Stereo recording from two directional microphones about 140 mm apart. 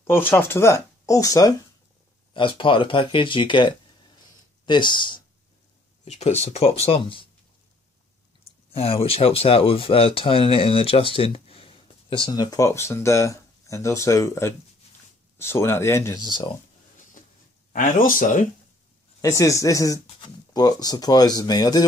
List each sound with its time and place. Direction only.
0.0 s speech: 15° left (ahead or behind)
2.3 s speech: 40° left (ahead or behind)
6.0 s speech: 50° left (ahead or behind)
8.6 s speech: 40° left (ahead or behind); by 16.2 s 20° left (ahead or behind)
16.2 s speech: 35° left (ahead or behind)
17.7 s speech: 75° left (ahead or behind)
19.2 s speech: 20° left (ahead or behind)